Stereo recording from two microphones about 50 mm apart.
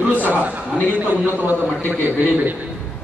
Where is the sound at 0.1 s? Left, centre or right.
Right.